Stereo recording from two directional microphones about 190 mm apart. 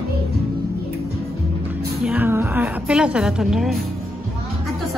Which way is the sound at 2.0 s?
10° right (ahead or behind).